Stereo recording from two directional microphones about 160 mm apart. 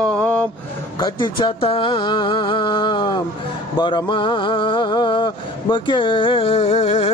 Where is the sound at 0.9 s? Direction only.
25° left (ahead or behind).